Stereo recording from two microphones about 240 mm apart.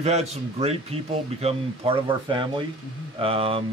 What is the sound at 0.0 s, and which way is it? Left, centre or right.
Speech, right.